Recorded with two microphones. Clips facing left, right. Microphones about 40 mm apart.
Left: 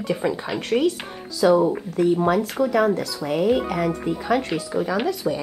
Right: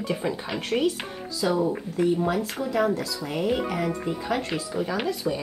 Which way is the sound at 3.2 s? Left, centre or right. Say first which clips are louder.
Left 7 dB; left.